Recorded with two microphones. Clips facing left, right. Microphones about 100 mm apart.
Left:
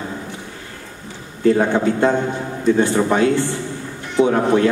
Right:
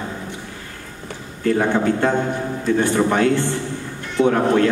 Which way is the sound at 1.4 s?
20° left (ahead or behind).